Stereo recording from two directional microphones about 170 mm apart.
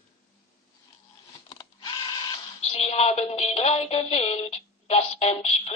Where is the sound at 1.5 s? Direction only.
25° left (ahead or behind).